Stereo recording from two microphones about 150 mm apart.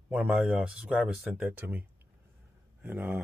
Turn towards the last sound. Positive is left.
turn(degrees=-10)  # may be behind; listen again after turning